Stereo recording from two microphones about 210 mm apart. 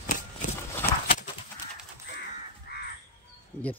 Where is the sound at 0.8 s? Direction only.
10° left (ahead or behind).